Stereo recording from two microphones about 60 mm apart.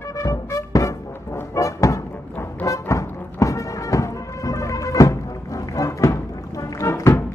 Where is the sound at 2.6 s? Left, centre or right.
Left.